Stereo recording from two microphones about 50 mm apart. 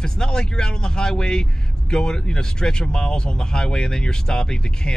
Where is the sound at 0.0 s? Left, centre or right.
Centre.